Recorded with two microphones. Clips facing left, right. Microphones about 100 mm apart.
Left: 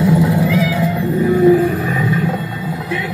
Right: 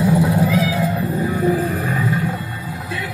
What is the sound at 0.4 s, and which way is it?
Cat, 30° right (ahead or behind).